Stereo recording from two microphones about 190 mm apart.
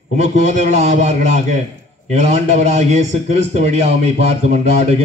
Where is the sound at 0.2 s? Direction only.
35° right (ahead or behind).